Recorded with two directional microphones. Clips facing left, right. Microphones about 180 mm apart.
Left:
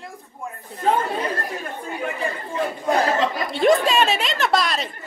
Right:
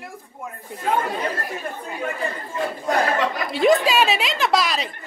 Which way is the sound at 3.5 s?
Centre (ahead or behind).